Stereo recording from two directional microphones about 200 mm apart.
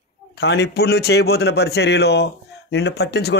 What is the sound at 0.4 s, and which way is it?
A man's voice, 55° left (ahead or behind).